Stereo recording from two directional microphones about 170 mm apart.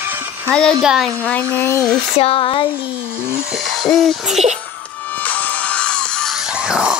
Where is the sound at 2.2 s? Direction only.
35° left (ahead or behind).